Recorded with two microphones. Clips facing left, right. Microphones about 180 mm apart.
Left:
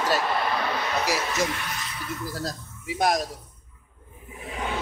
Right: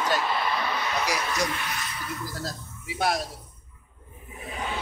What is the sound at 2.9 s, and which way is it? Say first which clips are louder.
Speech: left 3 dB; 40° left (ahead or behind).